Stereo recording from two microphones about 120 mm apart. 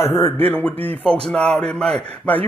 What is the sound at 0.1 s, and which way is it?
Speech, 15° left (ahead or behind).